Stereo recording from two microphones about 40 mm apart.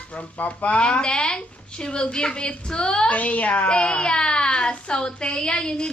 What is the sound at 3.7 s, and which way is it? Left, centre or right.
A woman's voice, left.